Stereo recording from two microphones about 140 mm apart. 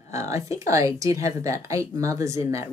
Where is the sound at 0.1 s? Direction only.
20° right (ahead or behind).